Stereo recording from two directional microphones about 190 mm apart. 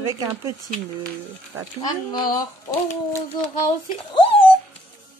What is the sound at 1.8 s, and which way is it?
Speech, 20° left (ahead or behind).